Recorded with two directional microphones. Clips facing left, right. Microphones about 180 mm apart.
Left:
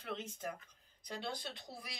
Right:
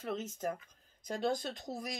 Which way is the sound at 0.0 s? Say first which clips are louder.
Right 6 dB; 45° right (ahead or behind).